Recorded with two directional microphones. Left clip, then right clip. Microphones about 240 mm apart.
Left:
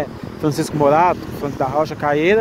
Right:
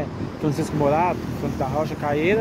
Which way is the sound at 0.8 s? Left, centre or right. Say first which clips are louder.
Left 7 dB; centre.